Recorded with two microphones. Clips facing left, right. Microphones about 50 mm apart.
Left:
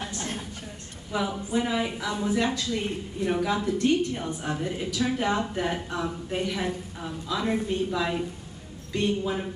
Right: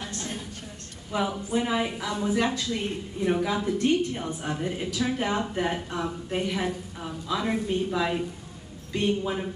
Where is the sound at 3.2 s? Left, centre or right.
Centre.